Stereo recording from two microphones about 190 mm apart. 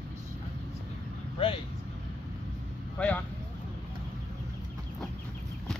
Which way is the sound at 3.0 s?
5° left (ahead or behind).